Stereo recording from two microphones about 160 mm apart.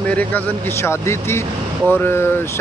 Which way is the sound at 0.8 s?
15° left (ahead or behind).